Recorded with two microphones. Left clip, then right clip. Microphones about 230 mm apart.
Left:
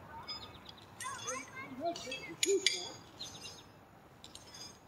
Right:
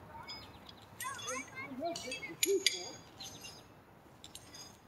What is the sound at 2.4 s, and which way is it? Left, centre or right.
Speech, right.